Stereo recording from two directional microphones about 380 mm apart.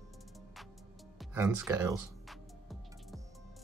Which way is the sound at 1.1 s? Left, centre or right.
Centre.